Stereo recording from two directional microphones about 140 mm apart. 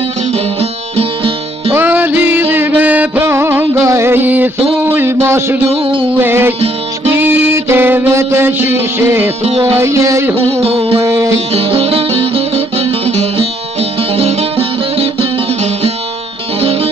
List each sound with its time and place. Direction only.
0.3 s music: 45° right (ahead or behind)
1.7 s music: 15° right (ahead or behind)
4.8 s a sound: 15° right (ahead or behind)
5.7 s a sound: 35° right (ahead or behind)
6.1 s music: 15° right (ahead or behind)
10.6 s music: 45° right (ahead or behind)
11.1 s music: 20° right (ahead or behind)
11.5 s music: 40° right (ahead or behind)